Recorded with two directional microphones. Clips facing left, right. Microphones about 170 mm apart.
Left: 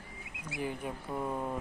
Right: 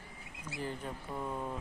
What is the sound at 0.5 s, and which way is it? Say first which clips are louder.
Speech: left 3 dB; 15° left (ahead or behind).